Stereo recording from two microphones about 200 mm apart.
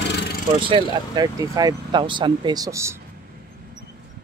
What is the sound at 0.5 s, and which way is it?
Speech, 25° right (ahead or behind).